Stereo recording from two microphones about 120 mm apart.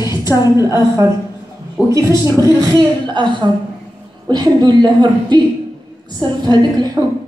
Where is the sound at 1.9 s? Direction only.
25° right (ahead or behind).